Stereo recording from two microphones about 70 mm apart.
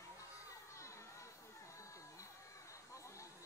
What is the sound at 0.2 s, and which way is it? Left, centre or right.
Children playing, left.